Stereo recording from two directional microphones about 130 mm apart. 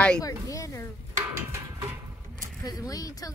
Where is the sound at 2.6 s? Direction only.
25° left (ahead or behind).